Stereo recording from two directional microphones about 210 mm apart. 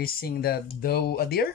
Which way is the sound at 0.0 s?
45° left (ahead or behind).